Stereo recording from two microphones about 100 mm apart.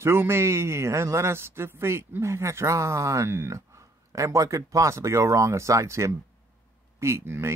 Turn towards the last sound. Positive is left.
turn(degrees=-25)  # may be behind; listen again after turning